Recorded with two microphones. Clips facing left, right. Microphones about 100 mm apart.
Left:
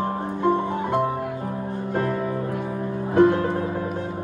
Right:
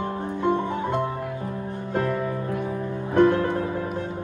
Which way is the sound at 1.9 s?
15° left (ahead or behind).